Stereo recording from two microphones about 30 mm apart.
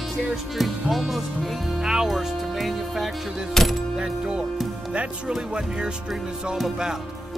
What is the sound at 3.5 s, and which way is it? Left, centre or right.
Music, centre.